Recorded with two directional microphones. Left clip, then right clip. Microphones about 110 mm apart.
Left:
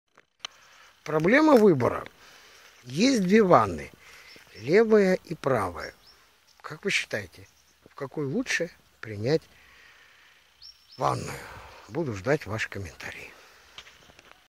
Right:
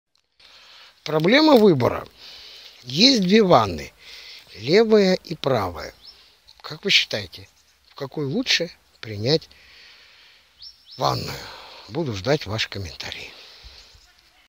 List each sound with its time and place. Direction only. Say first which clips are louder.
1.0 s speech: right 4 dB; 35° right (ahead or behind)
2.0 s a sound: right 6 dB; 25° right (ahead or behind)
3.1 s speech: right 3 dB; 20° right (ahead or behind); by 9.9 s 35° right (ahead or behind)
11.0 s speech: right 4 dB; 25° right (ahead or behind)